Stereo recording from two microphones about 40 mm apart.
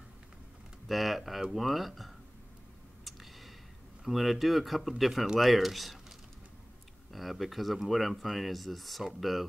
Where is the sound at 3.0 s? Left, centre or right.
Centre.